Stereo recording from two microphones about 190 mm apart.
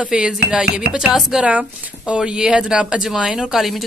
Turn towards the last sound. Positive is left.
turn(degrees=0)  # may be behind; listen again after turning